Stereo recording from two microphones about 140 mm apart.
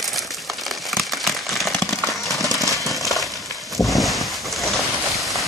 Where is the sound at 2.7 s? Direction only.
Centre (ahead or behind).